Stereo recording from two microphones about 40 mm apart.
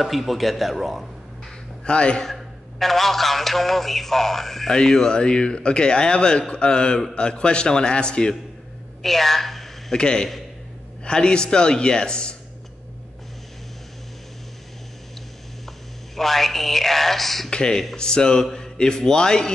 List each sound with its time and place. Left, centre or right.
0.0 s a man's voice: centre
1.9 s a man's voice: left
2.2 s a man's voice: centre; by 8.4 s left
9.0 s a sound: centre
9.9 s a man's voice: centre
16.2 s a man's voice: centre
17.5 s a man's voice: centre